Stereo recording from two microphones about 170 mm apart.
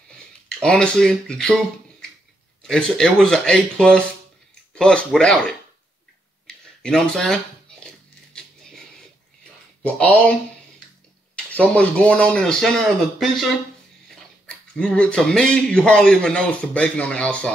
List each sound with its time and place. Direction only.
0.5 s speech: 5° left (ahead or behind)
6.8 s speech: 5° left (ahead or behind)
7.8 s a sound: 5° left (ahead or behind)
9.9 s speech: 5° left (ahead or behind)
11.3 s speech: 5° left (ahead or behind)